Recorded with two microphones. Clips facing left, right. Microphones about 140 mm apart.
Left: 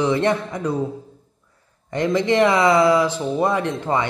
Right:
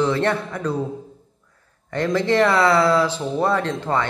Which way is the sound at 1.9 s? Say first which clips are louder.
Left 1 dB; 15° left (ahead or behind).